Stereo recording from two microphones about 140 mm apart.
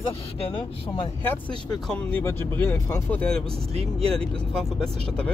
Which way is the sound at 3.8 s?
45° right (ahead or behind).